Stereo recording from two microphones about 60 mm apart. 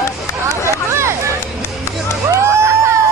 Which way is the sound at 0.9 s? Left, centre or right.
Right.